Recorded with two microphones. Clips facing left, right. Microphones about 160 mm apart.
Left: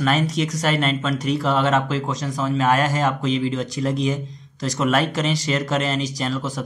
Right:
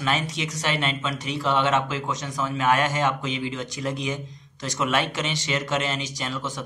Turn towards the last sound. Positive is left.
turn(degrees=35)  # may be behind; listen again after turning